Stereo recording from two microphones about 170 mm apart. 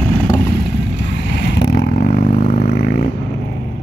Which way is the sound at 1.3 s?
85° left.